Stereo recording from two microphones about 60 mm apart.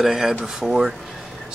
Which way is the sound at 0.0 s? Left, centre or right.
Centre.